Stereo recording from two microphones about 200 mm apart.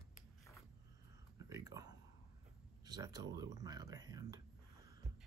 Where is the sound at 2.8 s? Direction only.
20° right (ahead or behind).